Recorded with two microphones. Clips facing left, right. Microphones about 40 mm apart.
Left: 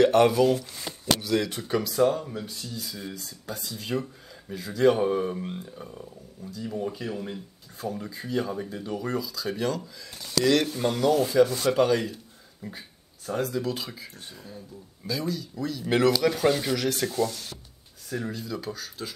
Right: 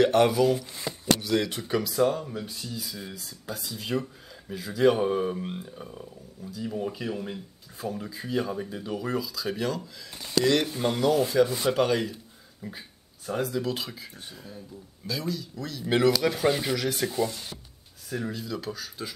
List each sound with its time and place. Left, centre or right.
0.0 s speech: centre
17.1 s speech: centre
18.1 s speech: centre